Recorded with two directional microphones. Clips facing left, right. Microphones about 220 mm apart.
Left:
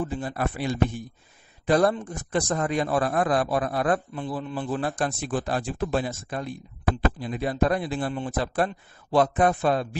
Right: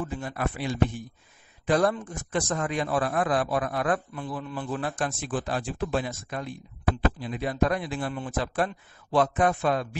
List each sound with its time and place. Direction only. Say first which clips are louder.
0.1 s speech: left 2 dB; 35° left (ahead or behind)